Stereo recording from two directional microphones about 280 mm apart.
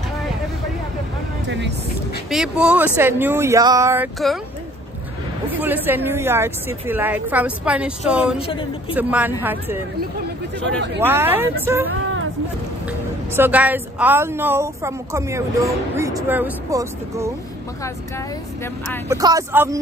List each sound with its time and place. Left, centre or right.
2.2 s a woman's voice: centre
5.5 s a woman's voice: centre
8.4 s speech: centre
8.9 s a woman's voice: centre
11.0 s a woman's voice: centre
13.4 s a woman's voice: centre
19.0 s a woman's voice: centre